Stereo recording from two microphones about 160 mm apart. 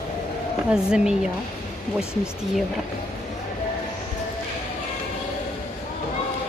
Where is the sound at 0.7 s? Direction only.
5° right (ahead or behind).